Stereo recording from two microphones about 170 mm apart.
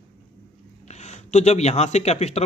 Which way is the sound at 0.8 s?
40° left (ahead or behind).